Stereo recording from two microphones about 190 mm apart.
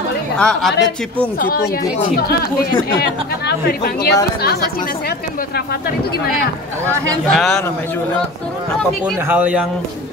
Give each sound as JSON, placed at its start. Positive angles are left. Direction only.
{"t": 0.4, "sound": "a woman's voice", "side_deg": 5}
{"t": 2.1, "sound": "speech", "side_deg": 55}
{"t": 7.2, "sound": "a woman's voice", "side_deg": 0}
{"t": 9.3, "sound": "speech", "side_deg": -5}